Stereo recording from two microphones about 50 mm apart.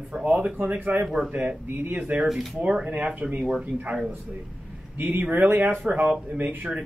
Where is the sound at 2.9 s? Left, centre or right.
Right.